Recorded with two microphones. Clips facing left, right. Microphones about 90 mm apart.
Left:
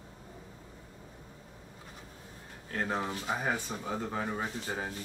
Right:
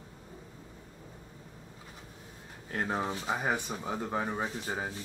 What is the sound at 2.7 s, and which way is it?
Speech, 20° right (ahead or behind).